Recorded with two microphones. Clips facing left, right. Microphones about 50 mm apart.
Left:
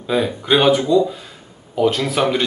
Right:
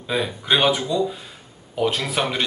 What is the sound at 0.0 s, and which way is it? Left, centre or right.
Speech, centre.